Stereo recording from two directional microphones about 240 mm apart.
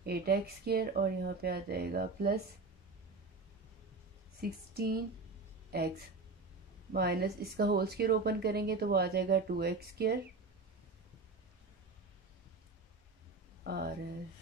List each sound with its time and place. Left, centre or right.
0.0 s speech: right
4.4 s speech: right
13.7 s speech: right